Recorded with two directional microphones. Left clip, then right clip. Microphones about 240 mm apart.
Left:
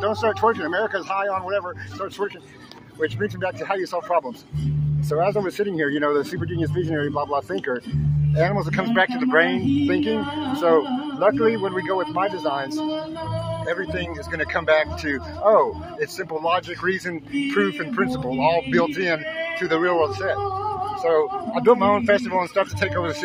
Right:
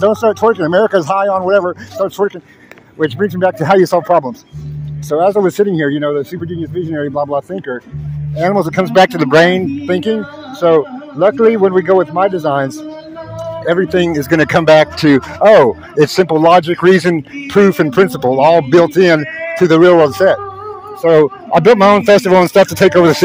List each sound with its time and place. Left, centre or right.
0.0 s speech: right
8.6 s speech: right
15.0 s speech: right